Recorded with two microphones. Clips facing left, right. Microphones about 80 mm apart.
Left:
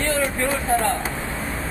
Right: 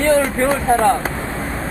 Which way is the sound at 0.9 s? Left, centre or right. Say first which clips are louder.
Right 6 dB; right.